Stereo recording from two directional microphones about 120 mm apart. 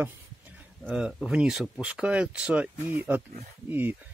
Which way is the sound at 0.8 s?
10° right (ahead or behind).